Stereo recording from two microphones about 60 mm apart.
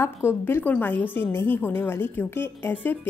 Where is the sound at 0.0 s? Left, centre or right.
Left.